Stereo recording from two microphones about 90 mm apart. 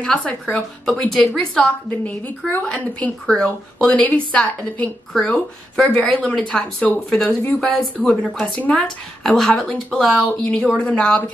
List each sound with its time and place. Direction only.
0.0 s a woman's voice: 10° left (ahead or behind)